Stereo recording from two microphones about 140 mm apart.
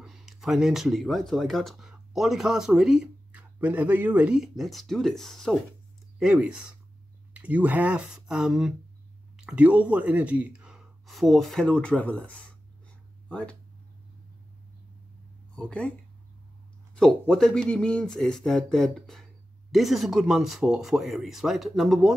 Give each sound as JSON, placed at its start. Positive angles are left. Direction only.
{"t": 0.0, "sound": "speech", "side_deg": 0}
{"t": 15.5, "sound": "speech", "side_deg": 5}
{"t": 16.9, "sound": "speech", "side_deg": 5}